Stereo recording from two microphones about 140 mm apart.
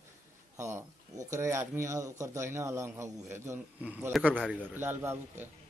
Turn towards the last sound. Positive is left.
turn(degrees=-15)  # may be behind; listen again after turning